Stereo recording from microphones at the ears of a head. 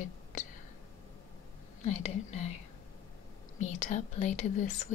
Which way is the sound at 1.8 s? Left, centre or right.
Left.